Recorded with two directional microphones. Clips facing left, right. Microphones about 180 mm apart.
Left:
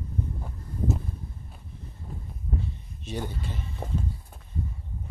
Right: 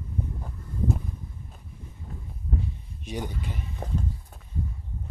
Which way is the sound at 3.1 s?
15° right (ahead or behind).